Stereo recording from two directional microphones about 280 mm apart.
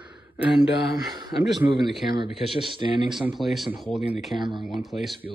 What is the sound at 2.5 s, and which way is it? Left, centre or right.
Speech, centre.